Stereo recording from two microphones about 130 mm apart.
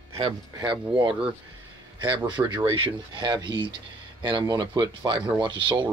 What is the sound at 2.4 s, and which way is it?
Speech, 35° right (ahead or behind).